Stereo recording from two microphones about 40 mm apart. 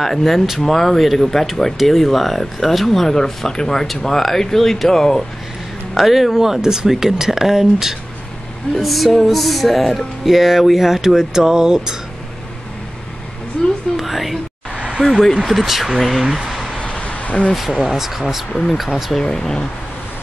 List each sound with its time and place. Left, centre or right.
0.0 s speech: centre
5.9 s speech: centre
8.7 s speech: centre
13.9 s a sound: centre
15.0 s speech: centre
16.7 s vehicle: left
17.6 s speech: centre
18.5 s speech: centre
18.8 s speech: centre
19.2 s speech: centre